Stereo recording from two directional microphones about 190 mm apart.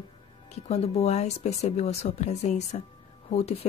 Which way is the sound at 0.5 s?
35° left (ahead or behind).